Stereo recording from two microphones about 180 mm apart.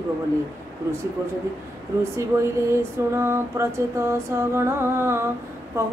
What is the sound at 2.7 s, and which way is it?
Female singing, 15° right (ahead or behind).